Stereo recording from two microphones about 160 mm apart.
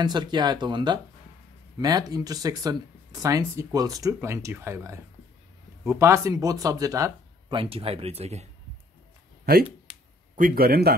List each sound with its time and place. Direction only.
0.0 s speech: 25° right (ahead or behind)
10.3 s speech: 60° right (ahead or behind)